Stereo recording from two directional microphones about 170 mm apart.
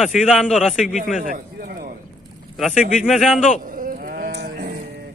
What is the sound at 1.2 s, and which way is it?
Speech, 50° right (ahead or behind).